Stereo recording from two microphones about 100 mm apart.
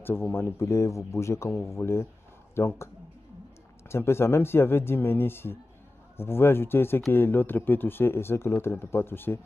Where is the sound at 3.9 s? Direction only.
25° left (ahead or behind).